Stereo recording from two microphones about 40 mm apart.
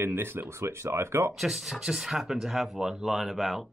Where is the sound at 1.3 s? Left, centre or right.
Centre.